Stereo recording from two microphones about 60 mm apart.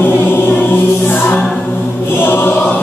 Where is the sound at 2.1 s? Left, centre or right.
Left.